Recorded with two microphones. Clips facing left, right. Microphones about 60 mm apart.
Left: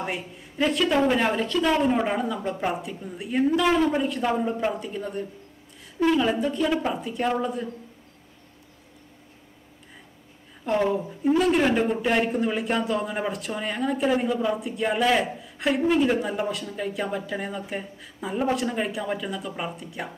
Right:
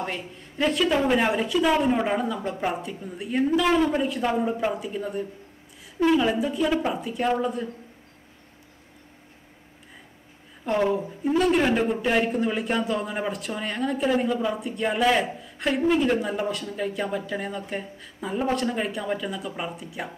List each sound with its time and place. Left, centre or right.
0.0 s speech: centre
10.6 s speech: centre